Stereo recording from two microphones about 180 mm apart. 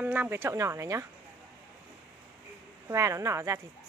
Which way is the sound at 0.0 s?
10° right (ahead or behind).